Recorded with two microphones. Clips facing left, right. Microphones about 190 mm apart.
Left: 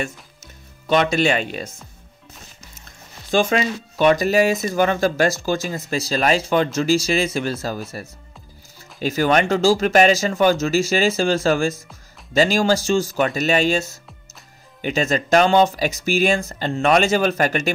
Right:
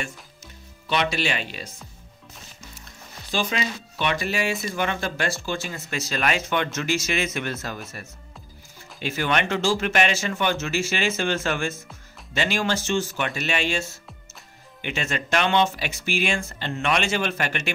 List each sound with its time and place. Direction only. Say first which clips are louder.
0.8 s speech: left 7 dB; 45° left (ahead or behind)
3.3 s speech: left 8 dB; 45° left (ahead or behind)
9.0 s speech: left 7 dB; 40° left (ahead or behind)